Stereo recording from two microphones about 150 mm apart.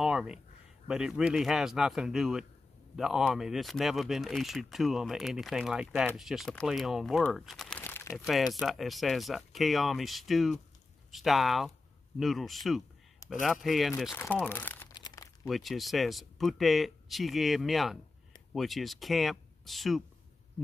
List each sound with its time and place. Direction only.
0.0 s a sound: 5° right (ahead or behind)
0.8 s speech: 5° right (ahead or behind)
7.8 s crumpling: 15° left (ahead or behind)
8.5 s speech: centre (ahead or behind)
14.3 s speech: 10° left (ahead or behind)
14.9 s crumpling: 25° left (ahead or behind)
15.4 s speech: centre (ahead or behind)